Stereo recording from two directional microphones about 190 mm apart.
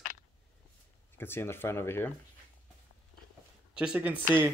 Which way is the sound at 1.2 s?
10° left (ahead or behind).